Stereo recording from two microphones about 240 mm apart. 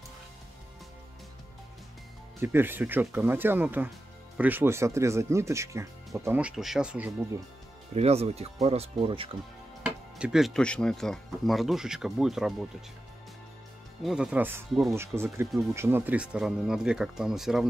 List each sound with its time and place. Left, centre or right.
2.4 s speech: centre
7.9 s speech: right
9.8 s speech: centre
14.0 s speech: centre